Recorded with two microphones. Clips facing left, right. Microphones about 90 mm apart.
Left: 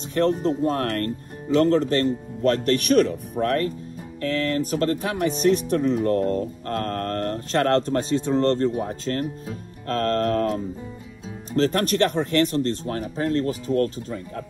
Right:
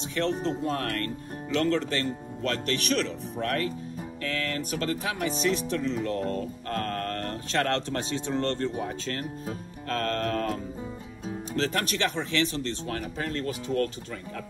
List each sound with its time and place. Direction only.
0.1 s speech: 45° left (ahead or behind)